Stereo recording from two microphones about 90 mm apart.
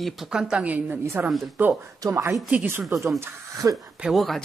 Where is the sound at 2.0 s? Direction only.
35° right (ahead or behind).